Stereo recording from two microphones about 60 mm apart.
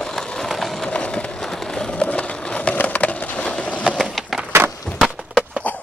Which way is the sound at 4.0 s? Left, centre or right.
Centre.